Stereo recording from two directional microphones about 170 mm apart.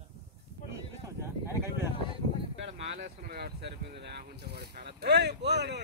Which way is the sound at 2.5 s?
90° right.